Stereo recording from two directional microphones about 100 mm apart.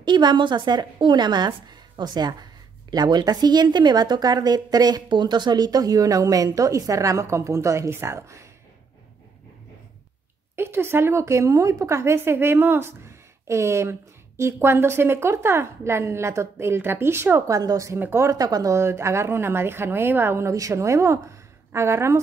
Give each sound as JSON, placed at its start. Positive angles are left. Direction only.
{"t": 0.0, "sound": "a woman's voice", "side_deg": -50}
{"t": 10.5, "sound": "speech", "side_deg": -25}
{"t": 17.6, "sound": "a woman's voice", "side_deg": -35}
{"t": 17.9, "sound": "speech", "side_deg": -20}
{"t": 18.3, "sound": "speech", "side_deg": -40}